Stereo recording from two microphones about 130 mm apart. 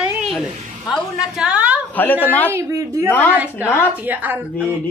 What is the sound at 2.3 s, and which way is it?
Speech, 15° left (ahead or behind).